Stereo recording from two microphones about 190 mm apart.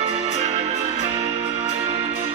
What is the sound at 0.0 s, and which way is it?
Music, 30° right (ahead or behind).